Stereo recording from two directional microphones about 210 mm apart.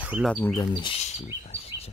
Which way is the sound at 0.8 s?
30° left (ahead or behind).